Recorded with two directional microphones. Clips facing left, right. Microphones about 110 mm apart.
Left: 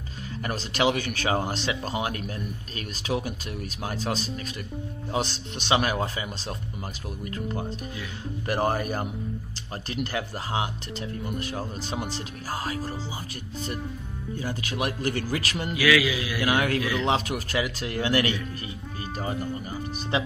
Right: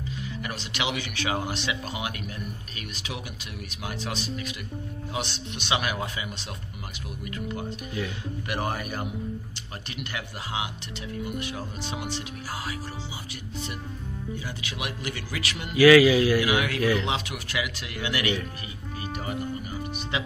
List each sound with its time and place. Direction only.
0.4 s speech: 40° left (ahead or behind)
8.5 s speech: 40° left (ahead or behind)
14.4 s speech: 40° left (ahead or behind)
15.7 s speech: 40° right (ahead or behind)
16.3 s speech: 45° left (ahead or behind)
20.1 s speech: 35° left (ahead or behind)